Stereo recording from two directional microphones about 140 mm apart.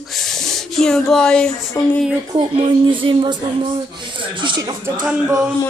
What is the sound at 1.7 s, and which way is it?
Speech, 25° left (ahead or behind).